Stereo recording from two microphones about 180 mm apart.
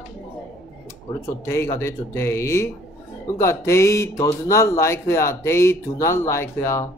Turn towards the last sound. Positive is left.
turn(degrees=15)  # may be behind; listen again after turning